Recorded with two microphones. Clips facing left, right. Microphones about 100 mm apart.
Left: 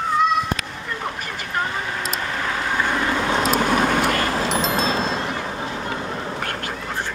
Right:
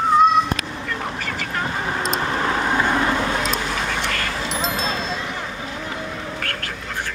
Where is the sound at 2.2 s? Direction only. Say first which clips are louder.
Right 4 dB; 30° right (ahead or behind).